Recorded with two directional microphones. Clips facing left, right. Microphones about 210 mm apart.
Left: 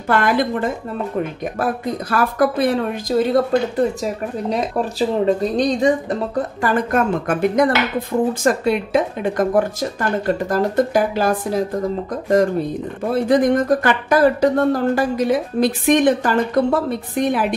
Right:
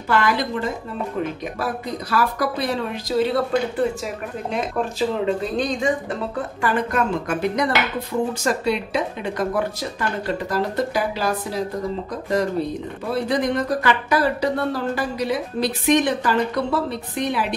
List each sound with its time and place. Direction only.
0.1 s speech: 50° left (ahead or behind)
13.1 s speech: 50° left (ahead or behind)